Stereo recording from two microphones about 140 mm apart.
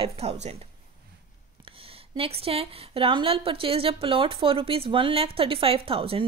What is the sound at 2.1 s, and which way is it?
A woman's voice, 40° right (ahead or behind).